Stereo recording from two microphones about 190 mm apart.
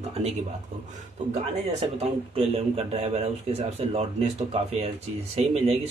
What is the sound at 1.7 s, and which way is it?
Speech, 30° right (ahead or behind).